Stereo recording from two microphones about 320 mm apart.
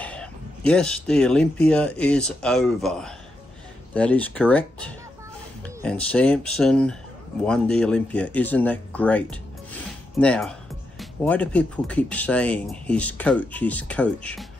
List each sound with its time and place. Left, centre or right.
0.0 s speech: centre